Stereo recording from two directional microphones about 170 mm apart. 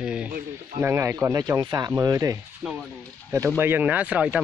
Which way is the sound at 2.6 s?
5° right (ahead or behind).